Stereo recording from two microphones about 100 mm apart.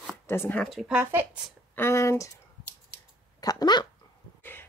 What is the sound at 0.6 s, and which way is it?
Speech, centre (ahead or behind).